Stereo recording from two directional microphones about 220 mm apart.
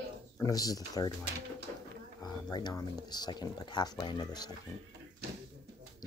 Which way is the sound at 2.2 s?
20° left (ahead or behind).